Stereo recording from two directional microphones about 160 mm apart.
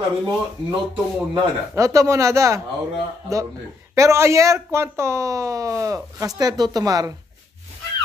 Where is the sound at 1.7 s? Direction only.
20° right (ahead or behind).